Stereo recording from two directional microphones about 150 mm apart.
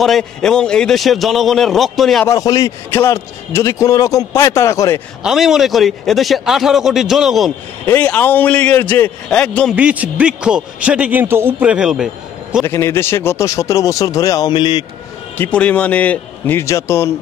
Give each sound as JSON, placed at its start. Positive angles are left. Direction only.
{"t": 0.0, "sound": "speech", "side_deg": 5}
{"t": 2.2, "sound": "a man's voice", "side_deg": 25}
{"t": 5.2, "sound": "speech", "side_deg": 0}
{"t": 7.8, "sound": "a man's voice", "side_deg": 10}
{"t": 9.8, "sound": "a man's voice", "side_deg": -10}
{"t": 12.6, "sound": "a man's voice", "side_deg": 15}
{"t": 15.3, "sound": "a man's voice", "side_deg": 10}